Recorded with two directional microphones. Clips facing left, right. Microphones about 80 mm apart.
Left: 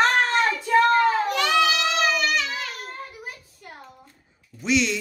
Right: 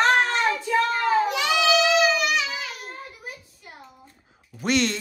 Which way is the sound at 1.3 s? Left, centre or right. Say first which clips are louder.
Even; centre.